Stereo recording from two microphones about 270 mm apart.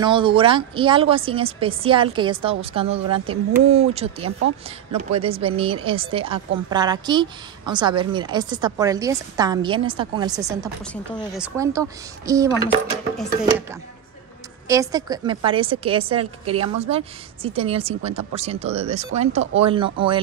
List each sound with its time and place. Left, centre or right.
0.0 s a woman's voice: centre
14.7 s speech: centre